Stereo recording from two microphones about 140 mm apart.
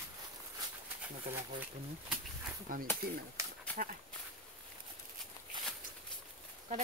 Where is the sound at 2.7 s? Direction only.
75° right (ahead or behind).